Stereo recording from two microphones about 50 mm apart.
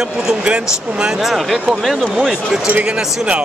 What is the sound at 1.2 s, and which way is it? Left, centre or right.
Speech, centre.